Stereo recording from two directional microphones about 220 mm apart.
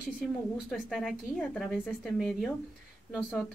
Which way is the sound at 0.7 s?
Centre (ahead or behind).